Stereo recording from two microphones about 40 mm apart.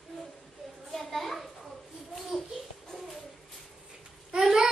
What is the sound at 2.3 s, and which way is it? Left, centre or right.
Babbling, centre.